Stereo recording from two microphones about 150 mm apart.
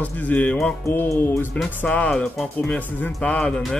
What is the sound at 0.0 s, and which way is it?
A man's voice, 10° left (ahead or behind).